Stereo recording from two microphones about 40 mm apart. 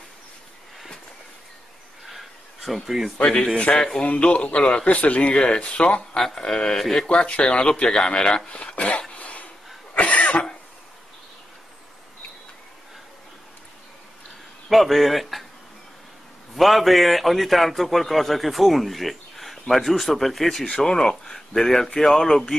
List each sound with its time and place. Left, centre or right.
2.0 s a sound: centre
3.3 s speech: left
4.0 s speech: left
4.8 s speech: left
6.1 s speech: centre
7.1 s speech: left
8.5 s a sound: left
9.1 s cough: left
14.7 s a man's voice: centre
16.5 s a man's voice: centre
20.6 s speech: centre